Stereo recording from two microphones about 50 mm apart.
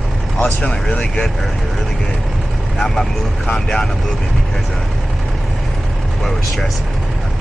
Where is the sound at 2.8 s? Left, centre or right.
Centre.